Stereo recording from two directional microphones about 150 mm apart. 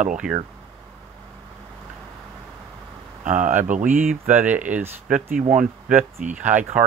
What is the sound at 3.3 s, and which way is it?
Speech, 60° right (ahead or behind).